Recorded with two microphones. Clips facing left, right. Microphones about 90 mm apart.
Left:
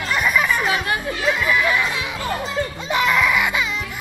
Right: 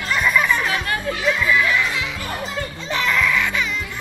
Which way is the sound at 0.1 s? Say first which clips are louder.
Right 1 dB; 10° left (ahead or behind).